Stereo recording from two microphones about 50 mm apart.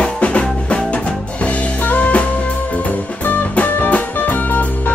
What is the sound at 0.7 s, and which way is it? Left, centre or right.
Music, left.